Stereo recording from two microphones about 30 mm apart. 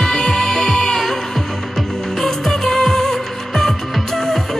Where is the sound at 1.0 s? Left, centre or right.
Centre.